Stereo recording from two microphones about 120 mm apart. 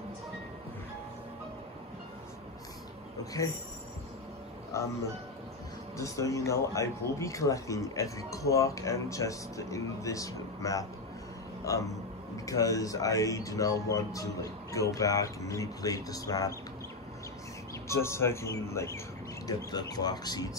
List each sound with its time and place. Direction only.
4.7 s speech: 25° left (ahead or behind)
5.9 s speech: 25° left (ahead or behind)
17.8 s speech: 20° left (ahead or behind)